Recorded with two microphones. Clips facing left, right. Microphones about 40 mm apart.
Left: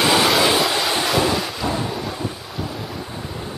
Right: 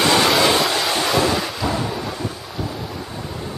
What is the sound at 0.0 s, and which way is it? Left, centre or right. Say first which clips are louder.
Train: right 1 dB; centre.